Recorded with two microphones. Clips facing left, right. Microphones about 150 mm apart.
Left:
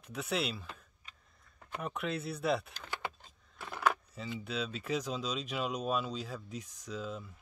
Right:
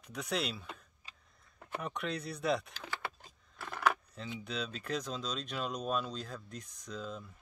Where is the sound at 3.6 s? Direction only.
Centre (ahead or behind).